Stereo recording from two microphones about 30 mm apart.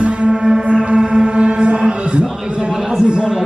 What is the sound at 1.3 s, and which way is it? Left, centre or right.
Music, right.